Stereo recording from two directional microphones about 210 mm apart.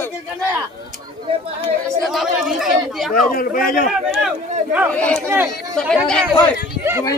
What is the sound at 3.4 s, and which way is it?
Speech, 40° left (ahead or behind).